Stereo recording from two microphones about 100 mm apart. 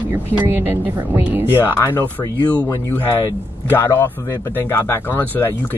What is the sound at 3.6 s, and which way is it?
Speech, 25° left (ahead or behind).